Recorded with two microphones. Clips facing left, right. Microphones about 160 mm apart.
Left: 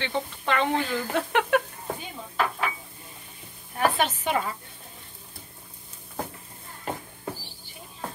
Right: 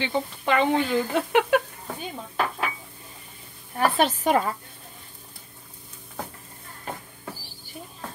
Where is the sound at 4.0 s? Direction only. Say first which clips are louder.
Right 5 dB; 35° right (ahead or behind).